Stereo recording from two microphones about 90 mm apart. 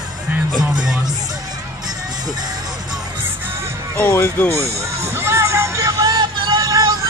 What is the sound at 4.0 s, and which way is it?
Speech, 25° left (ahead or behind).